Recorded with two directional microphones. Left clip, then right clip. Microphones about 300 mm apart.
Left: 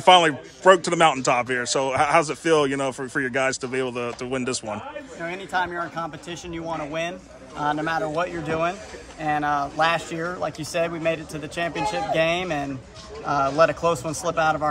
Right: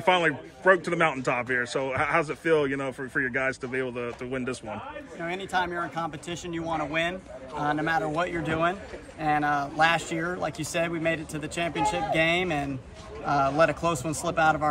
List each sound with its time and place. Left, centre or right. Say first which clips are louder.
0.0 s a man's voice: left 8 dB; centre
11.7 s speech: right 1 dB; left
12.1 s a man's voice: left 5 dB; centre